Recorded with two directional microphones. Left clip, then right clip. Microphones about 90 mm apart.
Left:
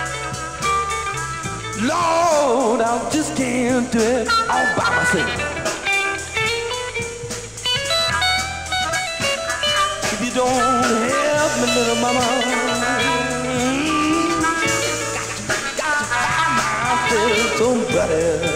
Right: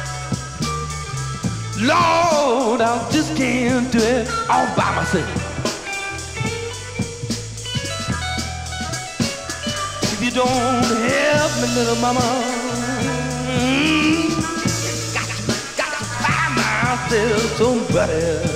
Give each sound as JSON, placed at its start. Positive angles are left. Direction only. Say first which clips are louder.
{"t": 1.8, "sound": "music", "louder": "right 2 dB", "side_deg": 20}
{"t": 4.8, "sound": "speech", "louder": "left 3 dB", "side_deg": 20}
{"t": 7.9, "sound": "music", "louder": "left 10 dB", "side_deg": 20}